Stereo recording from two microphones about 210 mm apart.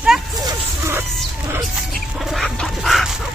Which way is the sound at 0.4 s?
15° right (ahead or behind).